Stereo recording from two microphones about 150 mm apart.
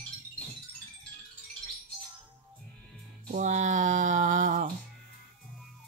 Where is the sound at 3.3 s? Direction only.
55° right (ahead or behind).